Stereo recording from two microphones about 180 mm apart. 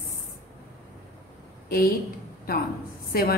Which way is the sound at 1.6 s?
55° left (ahead or behind).